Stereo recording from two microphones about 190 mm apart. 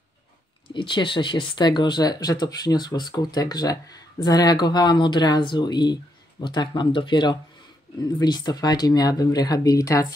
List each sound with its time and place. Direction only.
0.7 s speech: 25° left (ahead or behind)